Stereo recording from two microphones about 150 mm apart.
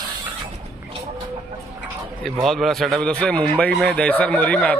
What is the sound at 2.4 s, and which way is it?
A man's voice, centre (ahead or behind).